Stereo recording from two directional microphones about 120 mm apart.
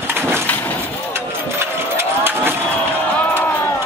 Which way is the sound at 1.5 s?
20° right (ahead or behind).